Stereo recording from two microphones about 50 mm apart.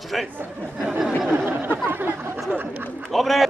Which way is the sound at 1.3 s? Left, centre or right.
Right.